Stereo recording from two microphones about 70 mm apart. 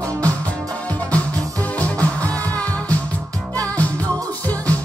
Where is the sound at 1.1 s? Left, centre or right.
Left.